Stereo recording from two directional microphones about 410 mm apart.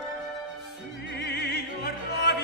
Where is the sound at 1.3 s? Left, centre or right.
Left.